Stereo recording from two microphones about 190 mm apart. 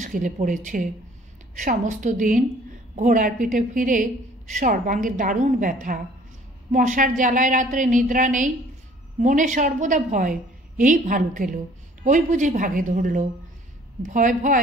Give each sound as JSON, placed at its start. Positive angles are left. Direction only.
{"t": 0.0, "sound": "a woman's voice", "side_deg": -45}